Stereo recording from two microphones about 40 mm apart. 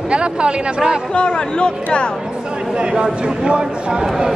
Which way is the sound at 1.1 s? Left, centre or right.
Left.